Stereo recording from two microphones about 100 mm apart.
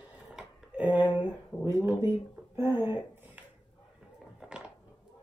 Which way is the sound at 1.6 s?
30° right (ahead or behind).